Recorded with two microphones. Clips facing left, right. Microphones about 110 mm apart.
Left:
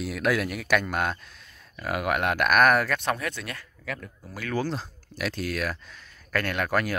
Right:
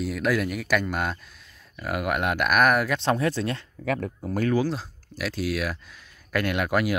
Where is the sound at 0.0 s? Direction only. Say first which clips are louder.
Right 1 dB; centre (ahead or behind).